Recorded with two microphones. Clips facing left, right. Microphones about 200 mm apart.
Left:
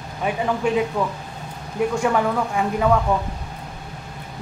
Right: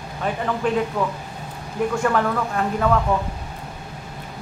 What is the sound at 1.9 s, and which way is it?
Speech, 10° left (ahead or behind).